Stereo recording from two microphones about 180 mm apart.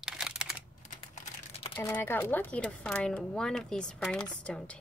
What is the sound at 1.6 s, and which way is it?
Crumpling, 25° left (ahead or behind).